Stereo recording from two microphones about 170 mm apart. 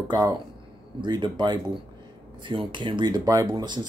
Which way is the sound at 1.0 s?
25° right (ahead or behind).